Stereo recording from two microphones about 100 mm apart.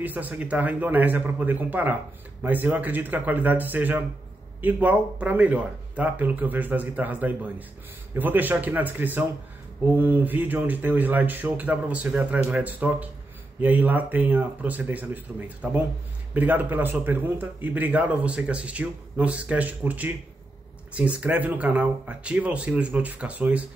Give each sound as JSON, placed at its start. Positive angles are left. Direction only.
{"t": 0.0, "sound": "a man's voice", "side_deg": -15}